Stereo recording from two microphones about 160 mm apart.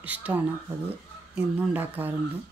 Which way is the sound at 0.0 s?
10° right (ahead or behind).